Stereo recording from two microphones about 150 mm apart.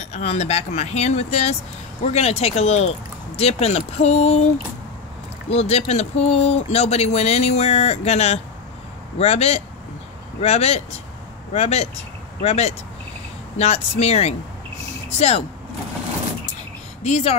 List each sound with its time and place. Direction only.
0.0 s speech: 45° left (ahead or behind)
5.5 s speech: 45° left (ahead or behind)
17.0 s speech: 45° left (ahead or behind)